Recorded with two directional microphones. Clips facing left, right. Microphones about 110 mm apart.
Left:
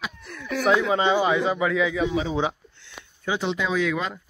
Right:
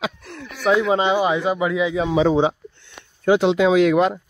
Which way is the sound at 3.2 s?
65° right (ahead or behind).